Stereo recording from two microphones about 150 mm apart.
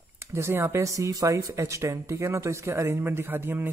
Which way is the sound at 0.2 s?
15° right (ahead or behind).